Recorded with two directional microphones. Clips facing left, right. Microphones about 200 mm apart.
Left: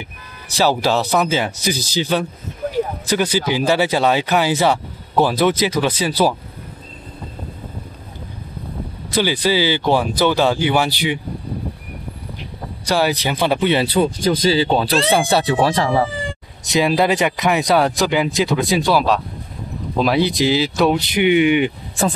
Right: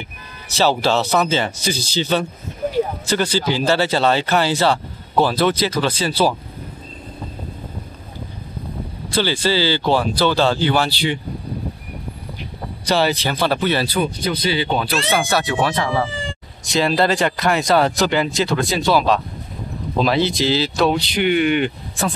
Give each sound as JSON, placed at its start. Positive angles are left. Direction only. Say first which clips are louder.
{"t": 0.6, "sound": "speech", "louder": "even", "side_deg": 15}
{"t": 9.1, "sound": "speech", "louder": "left 1 dB", "side_deg": 15}
{"t": 12.8, "sound": "speech", "louder": "even", "side_deg": 10}
{"t": 14.5, "sound": "speech", "louder": "left 4 dB", "side_deg": 30}
{"t": 16.6, "sound": "speech", "louder": "left 1 dB", "side_deg": 15}